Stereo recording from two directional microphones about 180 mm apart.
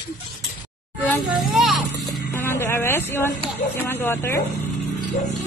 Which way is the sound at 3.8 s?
10° left (ahead or behind).